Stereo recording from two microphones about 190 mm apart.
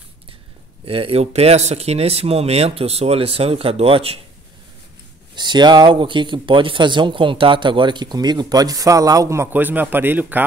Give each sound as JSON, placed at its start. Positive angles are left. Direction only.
{"t": 0.8, "sound": "speech", "side_deg": -30}
{"t": 5.3, "sound": "speech", "side_deg": -25}